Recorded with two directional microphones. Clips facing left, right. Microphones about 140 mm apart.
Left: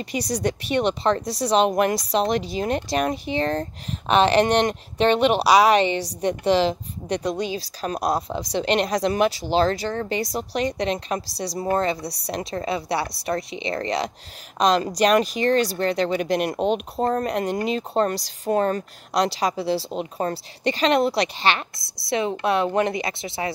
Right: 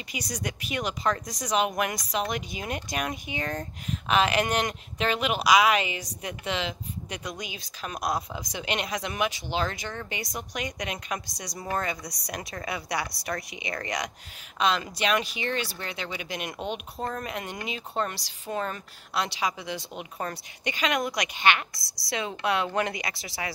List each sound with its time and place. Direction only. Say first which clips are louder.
0.0 s a woman's voice: left 10 dB; 40° left (ahead or behind)
14.6 s speech: left 8 dB; 40° left (ahead or behind)